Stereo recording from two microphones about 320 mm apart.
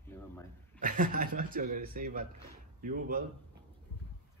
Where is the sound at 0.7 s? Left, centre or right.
Right.